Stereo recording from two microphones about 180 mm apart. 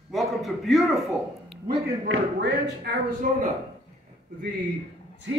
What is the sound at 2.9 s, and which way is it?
Speech, 65° right (ahead or behind).